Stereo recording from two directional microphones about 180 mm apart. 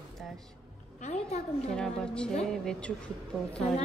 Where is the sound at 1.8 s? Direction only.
5° left (ahead or behind).